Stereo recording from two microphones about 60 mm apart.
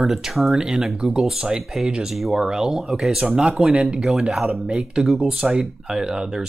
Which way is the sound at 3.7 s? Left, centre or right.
Centre.